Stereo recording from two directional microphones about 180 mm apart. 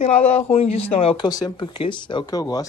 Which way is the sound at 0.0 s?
35° left (ahead or behind).